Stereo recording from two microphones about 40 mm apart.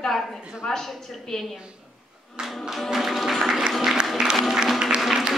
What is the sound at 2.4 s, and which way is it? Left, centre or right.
Music, centre.